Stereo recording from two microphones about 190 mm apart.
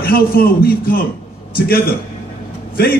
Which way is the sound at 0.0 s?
50° left (ahead or behind).